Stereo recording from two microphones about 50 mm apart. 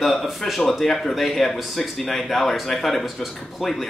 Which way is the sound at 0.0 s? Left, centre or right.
Centre.